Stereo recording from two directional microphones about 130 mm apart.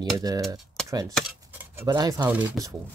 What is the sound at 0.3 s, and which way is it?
Speech, 30° right (ahead or behind).